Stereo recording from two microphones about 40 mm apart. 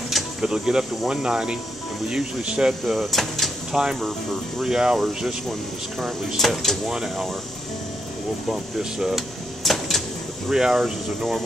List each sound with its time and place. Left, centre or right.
0.2 s a sound: centre
0.5 s speech: centre
2.8 s speech: centre
3.7 s speech: centre
4.9 s speech: centre
6.9 s speech: centre
8.5 s speech: centre
9.1 s a sound: centre
10.5 s speech: centre
10.8 s speech: centre